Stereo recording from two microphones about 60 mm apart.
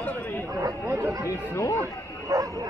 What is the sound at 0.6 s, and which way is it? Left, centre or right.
Speech, right.